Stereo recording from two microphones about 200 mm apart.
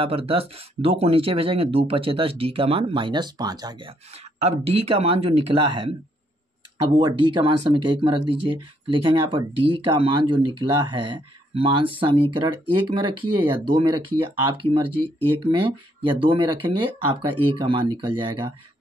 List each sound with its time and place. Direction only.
0.0 s speech: 30° right (ahead or behind)